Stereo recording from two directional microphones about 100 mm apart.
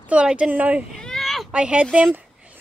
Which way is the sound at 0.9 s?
5° left (ahead or behind).